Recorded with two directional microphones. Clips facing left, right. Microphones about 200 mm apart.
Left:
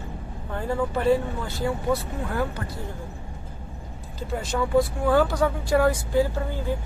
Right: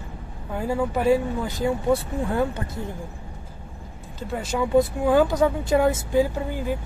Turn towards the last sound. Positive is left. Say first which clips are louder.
# right 1 dB
turn(degrees=-15)  # may be behind; listen again after turning